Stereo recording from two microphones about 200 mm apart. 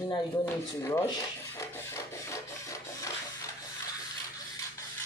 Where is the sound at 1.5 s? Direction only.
15° left (ahead or behind).